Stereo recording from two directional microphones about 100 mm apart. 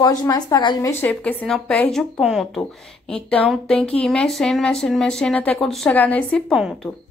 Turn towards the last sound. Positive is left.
turn(degrees=-5)  # may be behind; listen again after turning